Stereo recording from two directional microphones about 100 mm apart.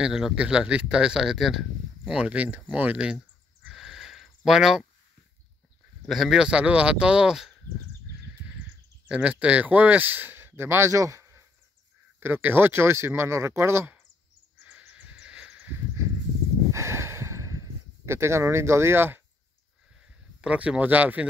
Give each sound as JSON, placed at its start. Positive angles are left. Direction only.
{"t": 0.0, "sound": "speech", "side_deg": -5}
{"t": 3.6, "sound": "a sound", "side_deg": -5}
{"t": 4.5, "sound": "speech", "side_deg": -5}
{"t": 6.0, "sound": "speech", "side_deg": 0}
{"t": 9.1, "sound": "speech", "side_deg": -10}
{"t": 12.2, "sound": "speech", "side_deg": -20}
{"t": 14.6, "sound": "owl", "side_deg": -15}
{"t": 16.7, "sound": "a sound", "side_deg": -30}
{"t": 20.3, "sound": "speech", "side_deg": -10}